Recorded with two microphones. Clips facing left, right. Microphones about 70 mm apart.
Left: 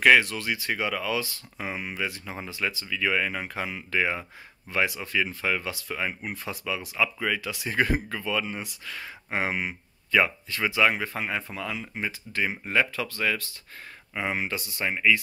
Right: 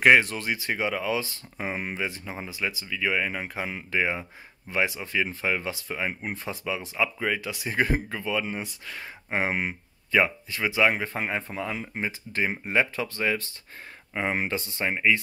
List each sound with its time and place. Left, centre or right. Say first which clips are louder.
0.0 s speech: right 1 dB; right